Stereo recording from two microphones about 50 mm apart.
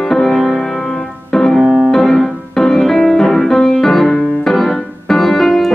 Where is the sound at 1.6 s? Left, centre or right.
Right.